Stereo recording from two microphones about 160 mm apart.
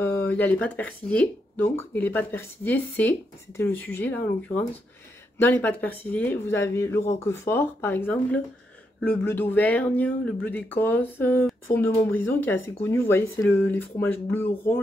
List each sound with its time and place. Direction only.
0.0 s speech: 10° left (ahead or behind)